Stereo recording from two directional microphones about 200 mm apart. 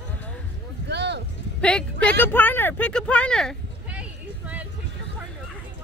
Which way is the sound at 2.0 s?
10° left (ahead or behind).